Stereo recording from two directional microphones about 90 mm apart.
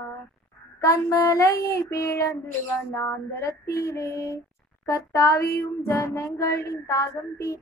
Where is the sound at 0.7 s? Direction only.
35° left (ahead or behind).